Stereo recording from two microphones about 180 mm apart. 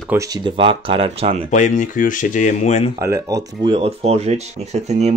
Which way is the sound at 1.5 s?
40° left (ahead or behind).